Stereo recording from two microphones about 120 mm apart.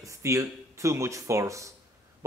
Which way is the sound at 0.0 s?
25° right (ahead or behind).